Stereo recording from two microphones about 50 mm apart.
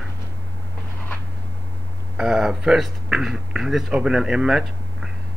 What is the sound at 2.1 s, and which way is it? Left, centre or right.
Speech, centre.